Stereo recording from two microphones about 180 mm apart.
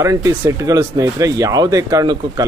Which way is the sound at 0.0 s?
15° right (ahead or behind).